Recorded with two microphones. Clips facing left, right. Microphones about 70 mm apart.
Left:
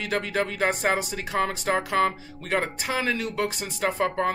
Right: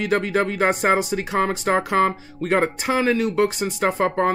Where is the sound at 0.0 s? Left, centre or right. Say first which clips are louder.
Right 6 dB; right.